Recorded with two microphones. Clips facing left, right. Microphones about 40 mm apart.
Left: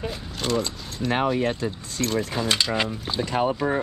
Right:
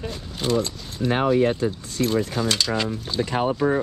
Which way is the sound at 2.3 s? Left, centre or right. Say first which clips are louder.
Even; centre.